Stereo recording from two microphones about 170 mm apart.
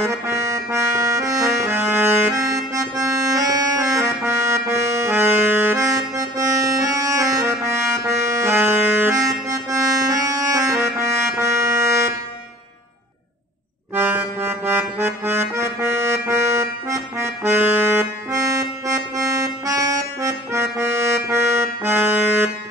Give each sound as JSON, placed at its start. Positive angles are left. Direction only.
{"t": 0.0, "sound": "accordion", "side_deg": -15}
{"t": 7.6, "sound": "music", "side_deg": -15}
{"t": 13.9, "sound": "accordion", "side_deg": -10}